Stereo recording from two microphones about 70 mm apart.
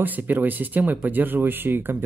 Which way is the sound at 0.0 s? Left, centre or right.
Right.